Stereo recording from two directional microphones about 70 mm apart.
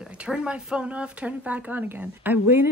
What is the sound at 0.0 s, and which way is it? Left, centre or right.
Speech, centre.